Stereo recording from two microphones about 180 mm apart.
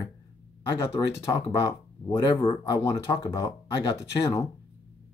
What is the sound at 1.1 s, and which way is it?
Speech, 15° left (ahead or behind).